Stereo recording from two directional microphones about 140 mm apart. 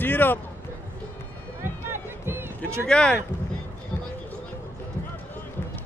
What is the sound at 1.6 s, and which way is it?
Music, 15° right (ahead or behind).